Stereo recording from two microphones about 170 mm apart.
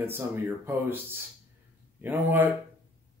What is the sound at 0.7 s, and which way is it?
A man's voice, 15° right (ahead or behind).